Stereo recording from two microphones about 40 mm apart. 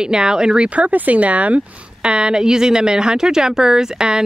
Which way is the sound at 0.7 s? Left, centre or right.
Right.